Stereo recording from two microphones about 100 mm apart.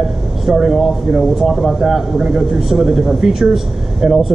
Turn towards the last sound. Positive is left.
turn(degrees=-5)  # may be behind; listen again after turning